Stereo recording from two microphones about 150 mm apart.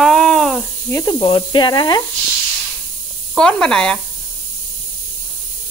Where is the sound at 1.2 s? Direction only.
30° left (ahead or behind).